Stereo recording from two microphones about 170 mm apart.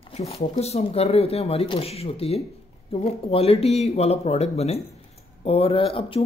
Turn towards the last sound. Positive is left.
turn(degrees=35)  # may be behind; listen again after turning